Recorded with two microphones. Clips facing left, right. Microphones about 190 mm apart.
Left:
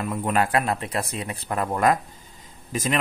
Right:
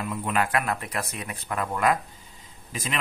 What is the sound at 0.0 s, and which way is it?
Speech, 45° left (ahead or behind).